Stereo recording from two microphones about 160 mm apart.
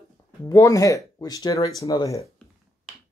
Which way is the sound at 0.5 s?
20° left (ahead or behind).